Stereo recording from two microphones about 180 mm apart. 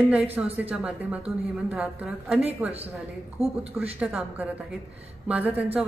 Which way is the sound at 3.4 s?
35° right (ahead or behind).